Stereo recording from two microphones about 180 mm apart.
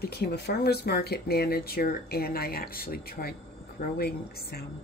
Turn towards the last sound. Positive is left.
turn(degrees=60)  # may be behind; listen again after turning